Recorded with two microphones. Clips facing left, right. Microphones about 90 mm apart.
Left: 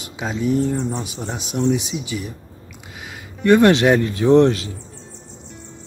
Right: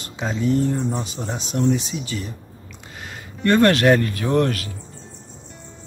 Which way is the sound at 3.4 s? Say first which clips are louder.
Left 2 dB; 15° left (ahead or behind).